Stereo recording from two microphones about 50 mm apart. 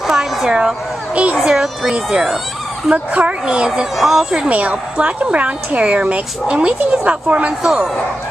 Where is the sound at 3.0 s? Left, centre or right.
Right.